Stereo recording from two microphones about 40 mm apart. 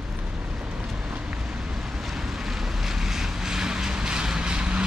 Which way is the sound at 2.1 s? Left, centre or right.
Centre.